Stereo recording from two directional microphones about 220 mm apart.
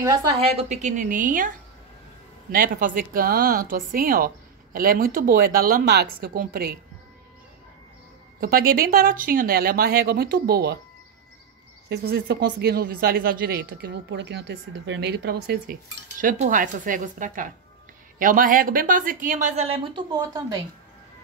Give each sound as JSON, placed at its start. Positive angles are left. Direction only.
{"t": 0.0, "sound": "a woman's voice", "side_deg": -20}
{"t": 0.7, "sound": "speech", "side_deg": -35}
{"t": 2.5, "sound": "speech", "side_deg": -40}
{"t": 8.4, "sound": "speech", "side_deg": -40}
{"t": 11.9, "sound": "speech", "side_deg": -50}